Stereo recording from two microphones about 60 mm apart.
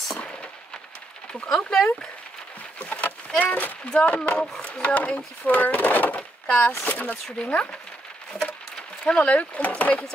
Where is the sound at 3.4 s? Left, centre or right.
Left.